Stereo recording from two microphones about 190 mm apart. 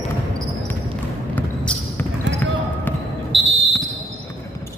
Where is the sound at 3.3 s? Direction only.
70° right (ahead or behind).